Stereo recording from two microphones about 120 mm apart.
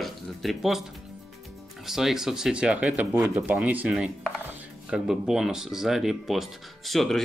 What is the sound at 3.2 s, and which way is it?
Speech, 25° right (ahead or behind).